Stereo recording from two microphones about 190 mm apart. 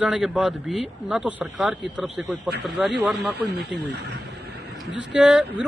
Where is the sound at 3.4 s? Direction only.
65° right (ahead or behind).